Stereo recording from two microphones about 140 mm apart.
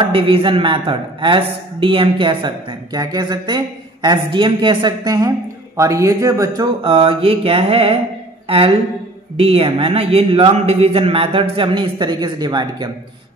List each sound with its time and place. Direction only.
0.0 s a man's voice: 40° right (ahead or behind); by 6.7 s 20° right (ahead or behind)
6.8 s a man's voice: 40° right (ahead or behind)